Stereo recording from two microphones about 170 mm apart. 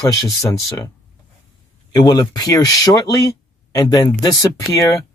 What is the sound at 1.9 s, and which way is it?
Speech, 25° left (ahead or behind).